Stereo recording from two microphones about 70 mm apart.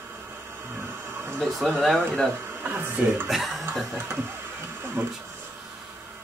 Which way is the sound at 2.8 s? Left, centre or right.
Right.